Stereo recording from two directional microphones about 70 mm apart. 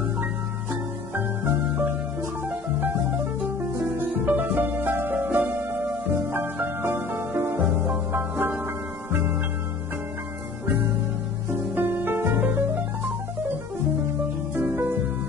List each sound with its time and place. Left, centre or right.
1.1 s music: right
4.2 s music: centre
4.6 s music: right
11.7 s music: right
14.5 s music: right